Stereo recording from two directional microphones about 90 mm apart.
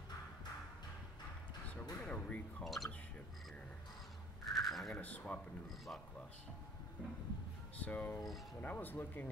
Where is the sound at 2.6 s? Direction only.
Centre (ahead or behind).